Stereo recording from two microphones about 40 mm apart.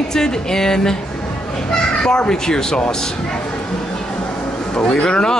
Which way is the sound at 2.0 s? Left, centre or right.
Left.